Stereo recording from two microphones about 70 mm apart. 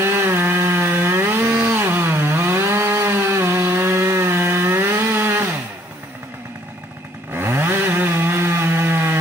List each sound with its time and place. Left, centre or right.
0.0 s chainsaw: right
7.3 s chainsaw: right